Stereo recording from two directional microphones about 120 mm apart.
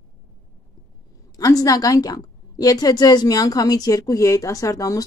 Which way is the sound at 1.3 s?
30° left (ahead or behind).